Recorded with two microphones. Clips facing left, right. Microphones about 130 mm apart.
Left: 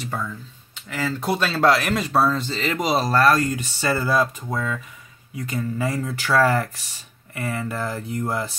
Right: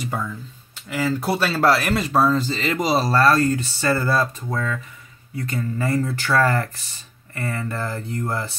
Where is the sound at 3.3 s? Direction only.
15° left (ahead or behind).